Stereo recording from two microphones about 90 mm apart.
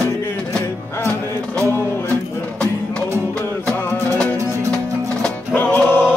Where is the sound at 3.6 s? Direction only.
15° left (ahead or behind).